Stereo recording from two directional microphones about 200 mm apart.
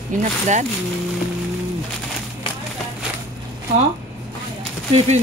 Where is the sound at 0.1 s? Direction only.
40° right (ahead or behind).